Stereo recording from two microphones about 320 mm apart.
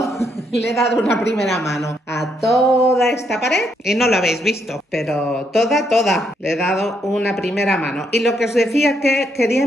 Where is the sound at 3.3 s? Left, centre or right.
Left.